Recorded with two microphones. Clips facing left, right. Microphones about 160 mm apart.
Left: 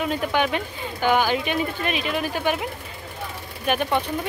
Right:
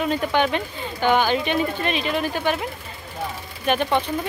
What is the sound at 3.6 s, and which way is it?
Speech, 10° left (ahead or behind).